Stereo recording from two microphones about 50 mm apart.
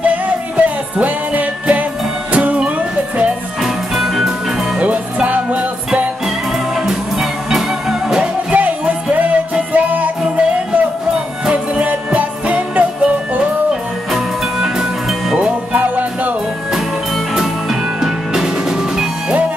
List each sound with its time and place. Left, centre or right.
0.6 s music: right
3.6 s music: centre
4.7 s music: right
6.9 s music: centre
8.5 s music: right
11.4 s music: right
14.1 s music: centre
15.3 s music: right
17.3 s music: centre